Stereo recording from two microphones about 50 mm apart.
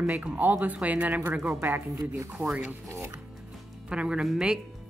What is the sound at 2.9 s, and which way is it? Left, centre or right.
Speech, right.